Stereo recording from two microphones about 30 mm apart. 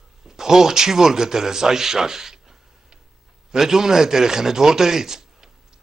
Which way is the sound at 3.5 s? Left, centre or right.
Centre.